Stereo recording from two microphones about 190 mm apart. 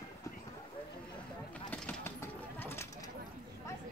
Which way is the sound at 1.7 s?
10° left (ahead or behind).